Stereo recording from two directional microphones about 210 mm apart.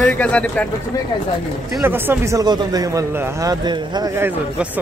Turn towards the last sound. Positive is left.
turn(degrees=-10)  # may be behind; listen again after turning